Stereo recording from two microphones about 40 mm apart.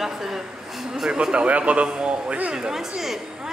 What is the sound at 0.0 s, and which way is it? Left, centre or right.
A man's voice, centre.